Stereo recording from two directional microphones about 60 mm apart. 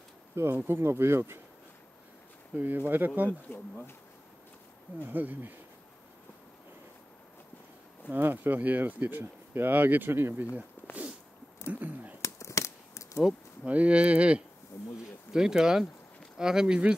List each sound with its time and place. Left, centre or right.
0.4 s speech: right
2.5 s speech: right
3.4 s speech: left
5.0 s speech: right
8.1 s speech: right
11.7 s a sound: right
12.2 s a sound: left
13.7 s speech: right
14.7 s speech: left
15.3 s speech: centre